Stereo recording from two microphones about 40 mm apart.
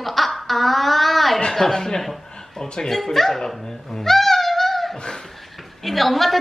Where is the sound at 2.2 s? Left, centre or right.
Centre.